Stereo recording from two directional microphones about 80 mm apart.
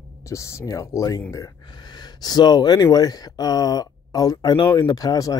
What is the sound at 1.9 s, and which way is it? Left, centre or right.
Speech, left.